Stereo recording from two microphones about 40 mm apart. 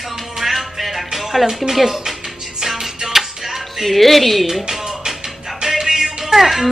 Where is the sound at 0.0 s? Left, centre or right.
Centre.